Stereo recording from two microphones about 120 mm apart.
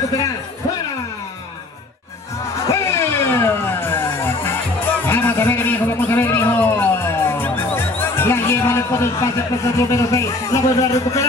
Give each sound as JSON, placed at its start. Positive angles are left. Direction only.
{"t": 2.7, "sound": "music", "side_deg": 20}
{"t": 5.0, "sound": "a sound", "side_deg": 15}
{"t": 9.8, "sound": "a man's voice", "side_deg": 25}